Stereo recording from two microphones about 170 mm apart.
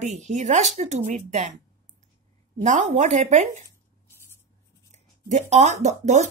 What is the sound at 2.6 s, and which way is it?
Speech, 45° right (ahead or behind).